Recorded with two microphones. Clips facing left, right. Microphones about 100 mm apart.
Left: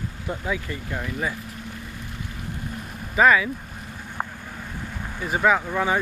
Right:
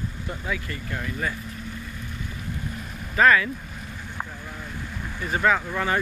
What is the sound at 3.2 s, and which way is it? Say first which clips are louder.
Speech: left 1 dB; 10° left (ahead or behind).